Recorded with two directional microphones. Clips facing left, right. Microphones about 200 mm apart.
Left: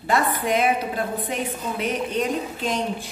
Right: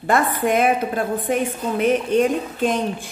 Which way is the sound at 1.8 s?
50° right (ahead or behind).